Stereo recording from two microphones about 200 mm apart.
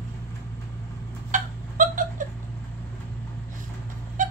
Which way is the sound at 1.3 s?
40° right (ahead or behind).